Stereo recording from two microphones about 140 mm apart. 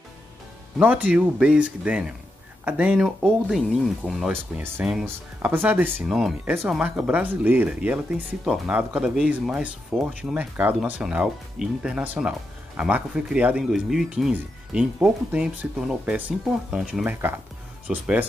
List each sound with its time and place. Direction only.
0.7 s speech: 10° right (ahead or behind)
4.3 s speech: 15° right (ahead or behind)
6.4 s speech: 15° right (ahead or behind)